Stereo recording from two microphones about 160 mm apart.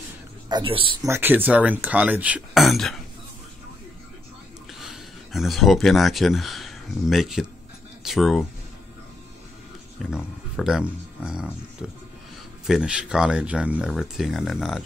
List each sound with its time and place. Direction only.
0.5 s speech: 30° right (ahead or behind)
1.0 s speech: 15° right (ahead or behind)
4.7 s speech: centre (ahead or behind)
10.0 s speech: 5° right (ahead or behind)